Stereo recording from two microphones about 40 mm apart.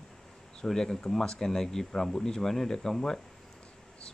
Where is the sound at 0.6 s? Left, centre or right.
Centre.